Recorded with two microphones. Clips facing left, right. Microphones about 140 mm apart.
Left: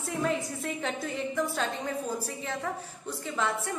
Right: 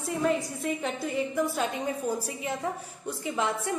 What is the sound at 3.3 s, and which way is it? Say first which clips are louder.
Speech: right 2 dB; 20° right (ahead or behind).